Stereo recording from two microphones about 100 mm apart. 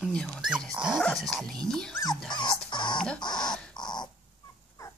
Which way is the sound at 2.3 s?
50° left (ahead or behind).